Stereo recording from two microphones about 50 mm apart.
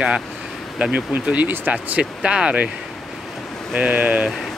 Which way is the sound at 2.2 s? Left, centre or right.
Centre.